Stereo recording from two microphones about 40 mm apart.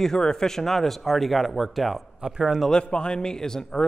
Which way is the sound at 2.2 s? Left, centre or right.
Centre.